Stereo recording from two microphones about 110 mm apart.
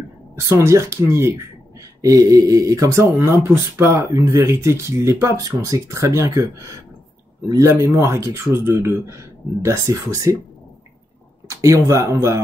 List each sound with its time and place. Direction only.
0.6 s speech: 25° right (ahead or behind)
11.4 s speech: 30° right (ahead or behind)